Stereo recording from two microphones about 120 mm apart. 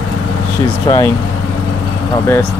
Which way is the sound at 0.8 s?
30° left (ahead or behind).